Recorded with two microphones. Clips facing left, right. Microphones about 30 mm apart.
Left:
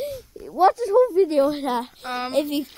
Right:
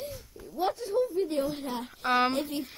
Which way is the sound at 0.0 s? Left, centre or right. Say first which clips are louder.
Left 9 dB; left.